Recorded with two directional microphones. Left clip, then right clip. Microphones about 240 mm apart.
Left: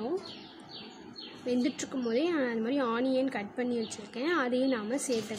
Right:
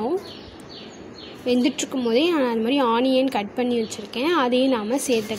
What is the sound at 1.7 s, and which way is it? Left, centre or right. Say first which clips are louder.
A woman's voice: right 10 dB; centre.